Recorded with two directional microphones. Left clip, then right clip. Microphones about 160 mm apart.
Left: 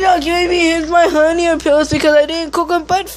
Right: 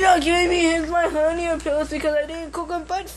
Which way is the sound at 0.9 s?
50° left (ahead or behind).